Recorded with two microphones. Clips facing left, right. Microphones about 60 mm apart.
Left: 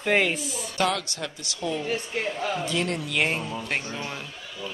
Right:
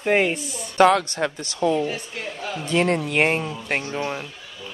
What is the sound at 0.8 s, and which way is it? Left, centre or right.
Speech, right.